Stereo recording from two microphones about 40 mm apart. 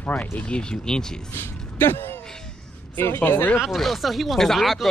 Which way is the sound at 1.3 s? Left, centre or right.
Left.